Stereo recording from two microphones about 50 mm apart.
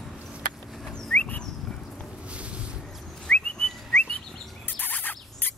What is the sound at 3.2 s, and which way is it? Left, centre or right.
Whistling, left.